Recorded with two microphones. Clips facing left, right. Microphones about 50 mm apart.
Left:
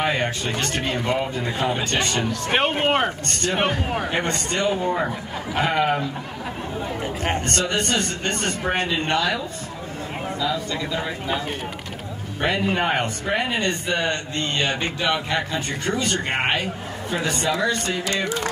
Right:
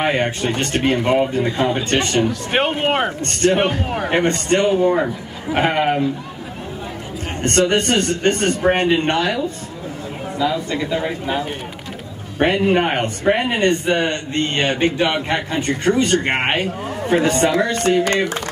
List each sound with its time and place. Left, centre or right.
0.0 s a man's voice: right
2.8 s a man's voice: centre
4.5 s a man's voice: right
7.4 s a man's voice: right
12.4 s a man's voice: right